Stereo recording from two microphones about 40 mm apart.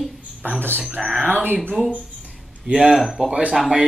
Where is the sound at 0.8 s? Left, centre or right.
Right.